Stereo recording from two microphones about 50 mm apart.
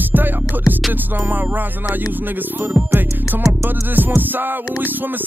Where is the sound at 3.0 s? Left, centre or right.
Right.